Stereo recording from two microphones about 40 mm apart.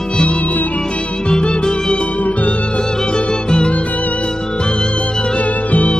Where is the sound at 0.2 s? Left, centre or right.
Left.